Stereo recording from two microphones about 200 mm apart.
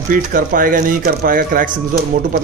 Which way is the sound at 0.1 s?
45° right (ahead or behind).